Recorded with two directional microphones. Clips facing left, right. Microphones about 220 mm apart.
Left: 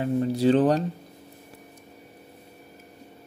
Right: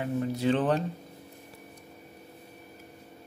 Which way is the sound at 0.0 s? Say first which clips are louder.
Left 6 dB; 35° left (ahead or behind).